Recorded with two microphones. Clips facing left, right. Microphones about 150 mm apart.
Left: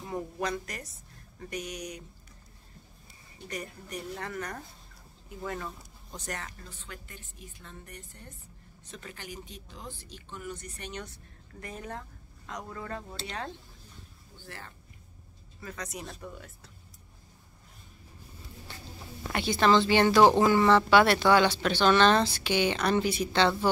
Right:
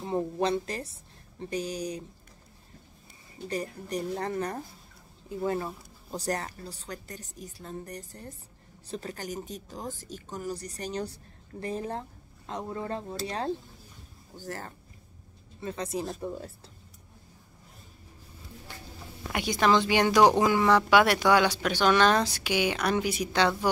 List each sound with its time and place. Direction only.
0.0 s a woman's voice: 30° right (ahead or behind)
3.4 s a woman's voice: 30° right (ahead or behind)
15.6 s a woman's voice: 30° right (ahead or behind)
19.3 s speech: 10° right (ahead or behind)